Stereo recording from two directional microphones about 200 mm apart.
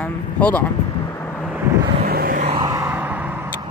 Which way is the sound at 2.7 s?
15° right (ahead or behind).